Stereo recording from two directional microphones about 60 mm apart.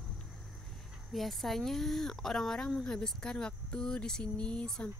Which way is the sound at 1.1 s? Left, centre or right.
Centre.